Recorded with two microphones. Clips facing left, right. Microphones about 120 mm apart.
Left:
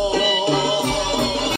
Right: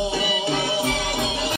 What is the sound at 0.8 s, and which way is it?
Music, 60° left (ahead or behind).